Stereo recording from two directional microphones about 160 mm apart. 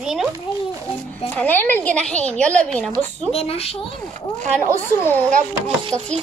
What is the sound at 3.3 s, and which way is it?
Speech, 40° left (ahead or behind).